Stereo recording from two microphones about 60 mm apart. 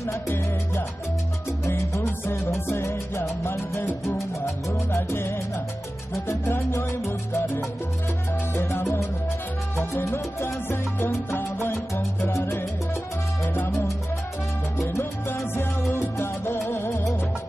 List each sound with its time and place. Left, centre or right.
1.7 s salsa music: left
2.7 s music: left
4.6 s salsa music: left
9.9 s salsa music: left
14.8 s salsa music: left
15.2 s salsa music: left
16.6 s music: left